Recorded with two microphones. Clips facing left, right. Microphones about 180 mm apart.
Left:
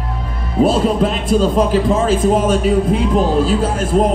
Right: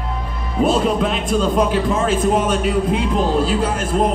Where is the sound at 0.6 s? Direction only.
40° left (ahead or behind).